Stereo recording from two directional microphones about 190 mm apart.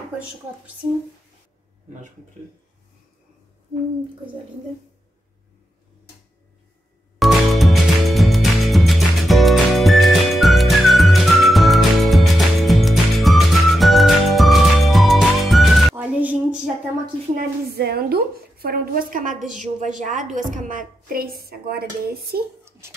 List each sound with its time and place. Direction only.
7.2 s music: centre (ahead or behind)
17.4 s a woman's voice: 55° right (ahead or behind)